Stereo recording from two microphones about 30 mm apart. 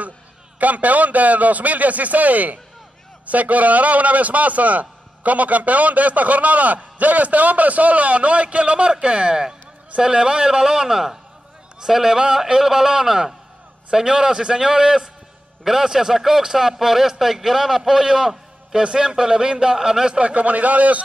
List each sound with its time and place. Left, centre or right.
0.6 s a man's voice: right
20.2 s a man's voice: right